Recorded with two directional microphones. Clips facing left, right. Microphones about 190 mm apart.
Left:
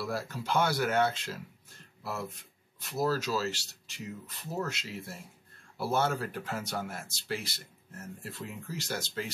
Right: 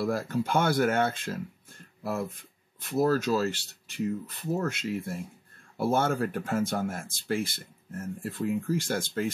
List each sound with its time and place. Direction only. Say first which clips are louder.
0.0 s speech: right 7 dB; 55° right (ahead or behind)
2.8 s speech: right 6 dB; 55° right (ahead or behind)